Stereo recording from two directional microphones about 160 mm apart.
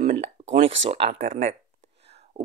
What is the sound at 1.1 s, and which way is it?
Speech, 55° right (ahead or behind).